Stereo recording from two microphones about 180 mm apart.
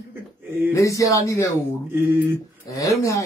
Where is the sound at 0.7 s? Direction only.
15° left (ahead or behind).